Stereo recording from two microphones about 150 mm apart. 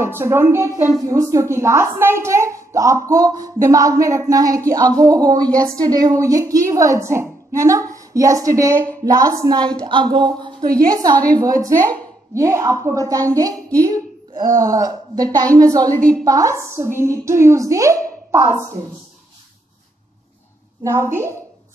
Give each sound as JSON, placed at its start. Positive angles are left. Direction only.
{"t": 0.0, "sound": "a woman's voice", "side_deg": -15}
{"t": 20.8, "sound": "a woman's voice", "side_deg": -20}